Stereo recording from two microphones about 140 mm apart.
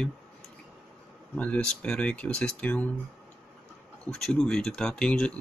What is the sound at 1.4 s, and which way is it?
Speech, 10° left (ahead or behind).